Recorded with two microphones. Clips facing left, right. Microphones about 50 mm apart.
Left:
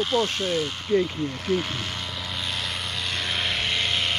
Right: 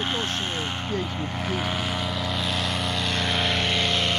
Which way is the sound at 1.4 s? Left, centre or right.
Centre.